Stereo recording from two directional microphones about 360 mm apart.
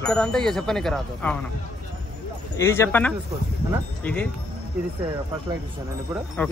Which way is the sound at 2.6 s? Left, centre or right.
Centre.